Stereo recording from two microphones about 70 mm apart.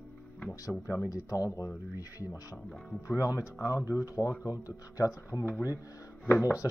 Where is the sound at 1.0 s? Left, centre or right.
Left.